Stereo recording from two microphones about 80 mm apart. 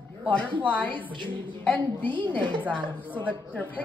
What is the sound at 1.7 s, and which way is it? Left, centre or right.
A woman's voice, left.